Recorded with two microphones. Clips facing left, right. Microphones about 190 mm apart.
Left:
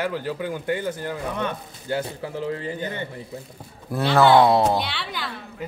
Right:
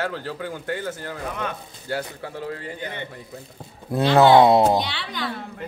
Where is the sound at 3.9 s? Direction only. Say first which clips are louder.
Right 2 dB; 20° right (ahead or behind).